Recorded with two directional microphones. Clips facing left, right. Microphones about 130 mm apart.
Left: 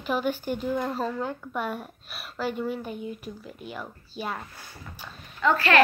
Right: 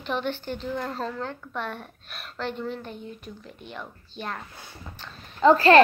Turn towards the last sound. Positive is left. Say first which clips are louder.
# right 6 dB
turn(degrees=-35)  # may be behind; listen again after turning